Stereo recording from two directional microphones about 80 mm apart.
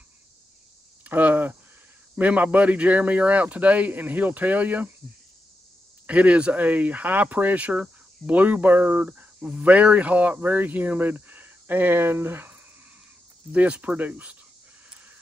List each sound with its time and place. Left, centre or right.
1.0 s a sound: right
2.1 s speech: centre
6.0 s speech: centre